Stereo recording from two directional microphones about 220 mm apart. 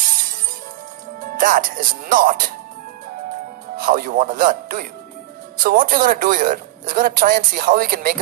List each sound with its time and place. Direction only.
1.2 s speech: 40° right (ahead or behind)
3.7 s speech: 40° right (ahead or behind)